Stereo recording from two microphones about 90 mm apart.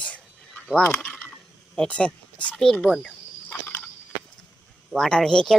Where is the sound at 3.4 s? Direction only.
25° left (ahead or behind).